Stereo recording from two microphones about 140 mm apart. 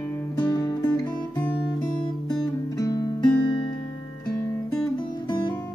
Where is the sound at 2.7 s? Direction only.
25° left (ahead or behind).